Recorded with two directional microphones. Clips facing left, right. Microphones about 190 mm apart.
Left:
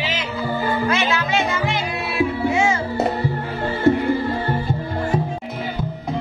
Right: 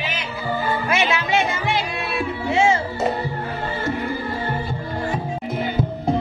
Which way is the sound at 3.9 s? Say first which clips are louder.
Left 11 dB; 60° left (ahead or behind).